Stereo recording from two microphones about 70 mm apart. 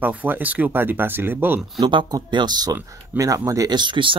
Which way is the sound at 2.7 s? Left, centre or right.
Right.